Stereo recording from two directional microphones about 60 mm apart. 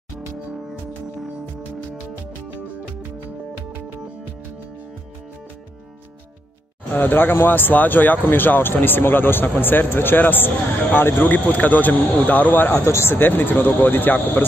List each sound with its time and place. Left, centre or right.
6.9 s speech: left
12.8 s speech: left
13.1 s speech: left